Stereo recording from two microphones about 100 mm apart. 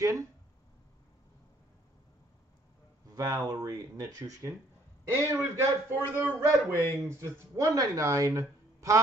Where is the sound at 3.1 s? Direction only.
40° right (ahead or behind).